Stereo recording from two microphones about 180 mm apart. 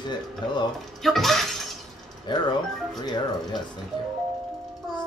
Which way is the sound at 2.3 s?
25° left (ahead or behind).